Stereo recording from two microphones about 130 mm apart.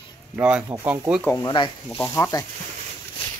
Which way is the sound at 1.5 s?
35° left (ahead or behind).